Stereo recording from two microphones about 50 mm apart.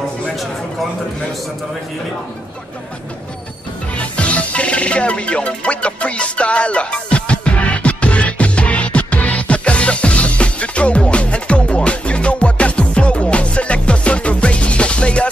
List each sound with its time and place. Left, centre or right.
3.9 s music: left